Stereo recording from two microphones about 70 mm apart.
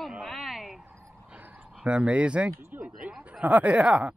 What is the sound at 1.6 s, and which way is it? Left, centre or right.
Speech, centre.